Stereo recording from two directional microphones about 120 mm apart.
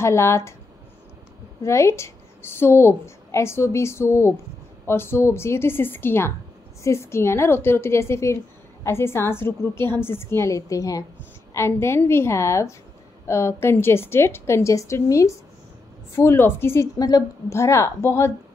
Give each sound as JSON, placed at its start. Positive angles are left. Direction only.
{"t": 0.0, "sound": "a woman's voice", "side_deg": 20}
{"t": 1.6, "sound": "a woman's voice", "side_deg": 25}